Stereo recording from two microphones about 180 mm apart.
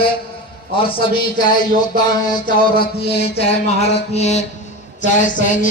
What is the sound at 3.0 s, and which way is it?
A man's voice, 35° left (ahead or behind).